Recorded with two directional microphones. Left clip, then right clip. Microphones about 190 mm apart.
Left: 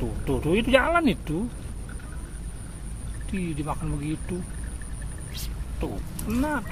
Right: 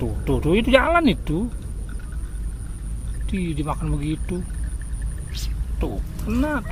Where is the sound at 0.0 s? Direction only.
20° right (ahead or behind).